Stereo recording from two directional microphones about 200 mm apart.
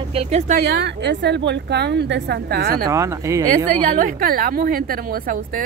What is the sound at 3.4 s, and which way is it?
A woman's voice, 40° right (ahead or behind).